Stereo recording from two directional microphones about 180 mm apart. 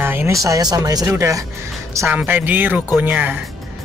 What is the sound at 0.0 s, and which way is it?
Speech, 10° right (ahead or behind).